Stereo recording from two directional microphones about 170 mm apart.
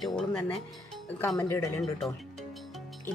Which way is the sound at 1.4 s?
15° left (ahead or behind).